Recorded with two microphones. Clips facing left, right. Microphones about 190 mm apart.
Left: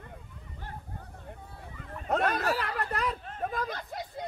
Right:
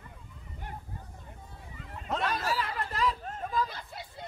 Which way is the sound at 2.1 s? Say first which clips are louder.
Left 4 dB; 60° left (ahead or behind).